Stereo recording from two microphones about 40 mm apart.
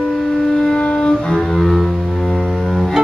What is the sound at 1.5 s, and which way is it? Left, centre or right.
Music, centre.